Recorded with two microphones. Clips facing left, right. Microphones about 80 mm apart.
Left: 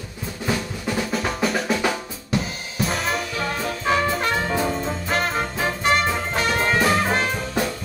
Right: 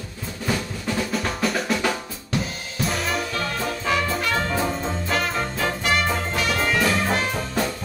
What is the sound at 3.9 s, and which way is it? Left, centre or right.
Music, left.